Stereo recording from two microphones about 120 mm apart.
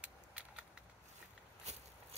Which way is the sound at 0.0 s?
10° right (ahead or behind).